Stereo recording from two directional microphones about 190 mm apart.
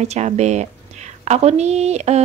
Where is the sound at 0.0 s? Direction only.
35° right (ahead or behind).